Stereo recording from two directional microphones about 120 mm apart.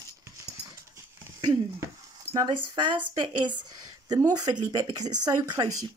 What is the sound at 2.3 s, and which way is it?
A woman's voice, 35° right (ahead or behind).